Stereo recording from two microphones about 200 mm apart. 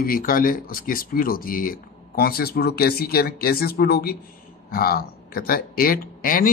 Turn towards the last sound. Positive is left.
turn(degrees=45)  # may be behind; listen again after turning